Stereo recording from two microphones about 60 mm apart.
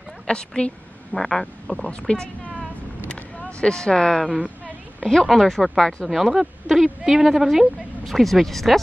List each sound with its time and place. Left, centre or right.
0.3 s a woman's voice: centre
1.9 s a woman's voice: centre
3.1 s a sound: centre
5.0 s speech: centre